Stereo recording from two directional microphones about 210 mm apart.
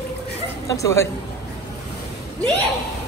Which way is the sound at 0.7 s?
15° left (ahead or behind).